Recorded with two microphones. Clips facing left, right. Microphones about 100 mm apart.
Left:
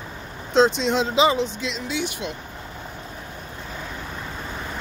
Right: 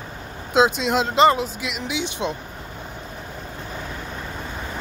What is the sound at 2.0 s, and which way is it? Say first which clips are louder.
Speech: right 5 dB; 20° right (ahead or behind).